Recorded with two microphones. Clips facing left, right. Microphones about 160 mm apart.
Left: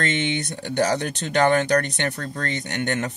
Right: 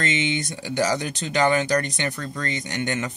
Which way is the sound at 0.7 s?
60° left (ahead or behind).